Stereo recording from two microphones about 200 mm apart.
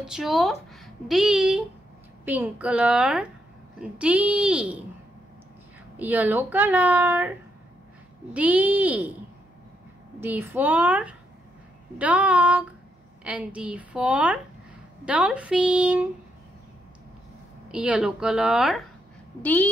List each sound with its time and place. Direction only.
0.0 s a woman's voice: centre (ahead or behind)
5.9 s speech: 10° right (ahead or behind)
10.2 s a woman's voice: 10° right (ahead or behind)
17.6 s a woman's voice: 5° right (ahead or behind)